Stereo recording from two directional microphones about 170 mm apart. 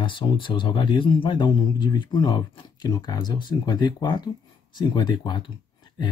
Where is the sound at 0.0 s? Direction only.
30° left (ahead or behind).